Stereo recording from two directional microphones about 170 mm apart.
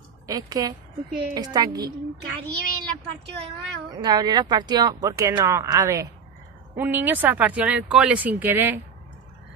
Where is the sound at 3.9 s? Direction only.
20° right (ahead or behind).